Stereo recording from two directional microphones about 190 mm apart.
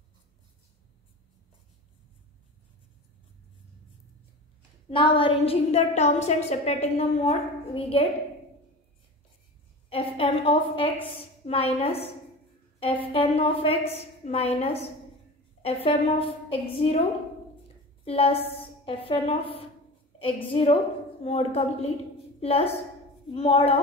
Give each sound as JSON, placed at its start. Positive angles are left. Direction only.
{"t": 4.8, "sound": "a woman's voice", "side_deg": 25}
{"t": 9.8, "sound": "a woman's voice", "side_deg": 30}
{"t": 18.0, "sound": "a woman's voice", "side_deg": 30}